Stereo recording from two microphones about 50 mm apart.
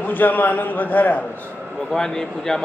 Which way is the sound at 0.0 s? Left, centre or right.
Left.